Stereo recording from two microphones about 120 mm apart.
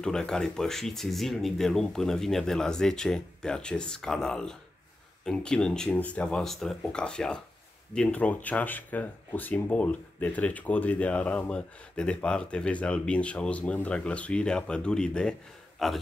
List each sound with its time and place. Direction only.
0.0 s speech: 5° left (ahead or behind)